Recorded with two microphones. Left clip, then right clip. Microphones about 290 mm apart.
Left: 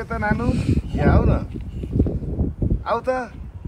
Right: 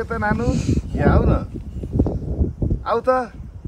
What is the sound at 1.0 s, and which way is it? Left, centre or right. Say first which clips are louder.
Speech: right 2 dB; right.